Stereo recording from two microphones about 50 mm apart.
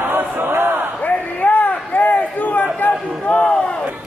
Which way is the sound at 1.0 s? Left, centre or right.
Left.